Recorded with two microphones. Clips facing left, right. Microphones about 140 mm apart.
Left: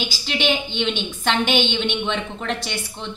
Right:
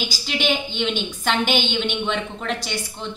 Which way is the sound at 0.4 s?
5° right (ahead or behind).